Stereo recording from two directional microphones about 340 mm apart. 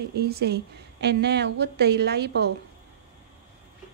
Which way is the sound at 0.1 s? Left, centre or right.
Right.